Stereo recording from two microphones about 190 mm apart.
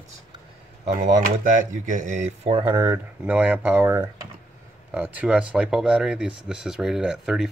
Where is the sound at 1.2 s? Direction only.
45° right (ahead or behind).